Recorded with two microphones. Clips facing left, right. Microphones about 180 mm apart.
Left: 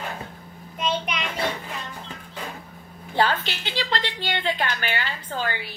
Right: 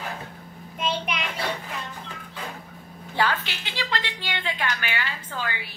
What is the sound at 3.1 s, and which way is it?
A woman's voice, 35° left (ahead or behind).